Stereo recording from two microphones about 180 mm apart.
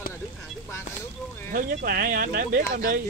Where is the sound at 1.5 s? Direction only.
55° right (ahead or behind).